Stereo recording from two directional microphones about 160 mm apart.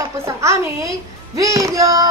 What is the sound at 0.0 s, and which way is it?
A child's voice, 20° right (ahead or behind).